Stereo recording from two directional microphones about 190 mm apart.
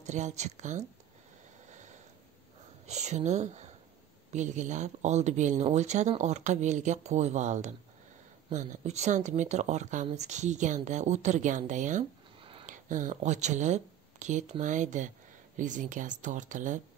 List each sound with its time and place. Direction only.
0.0 s speech: 40° right (ahead or behind)
1.7 s a sound: 40° right (ahead or behind)
2.9 s speech: 35° right (ahead or behind)